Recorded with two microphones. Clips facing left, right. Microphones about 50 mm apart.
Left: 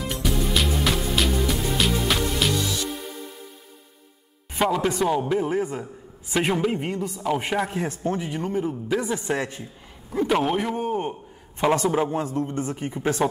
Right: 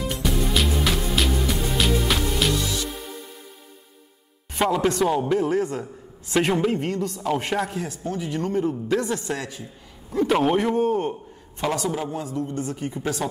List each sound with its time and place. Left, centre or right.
0.0 s music: centre
4.6 s a man's voice: centre
7.7 s speech: left
8.3 s a man's voice: centre
9.2 s a man's voice: left
10.3 s a man's voice: centre
11.7 s a man's voice: left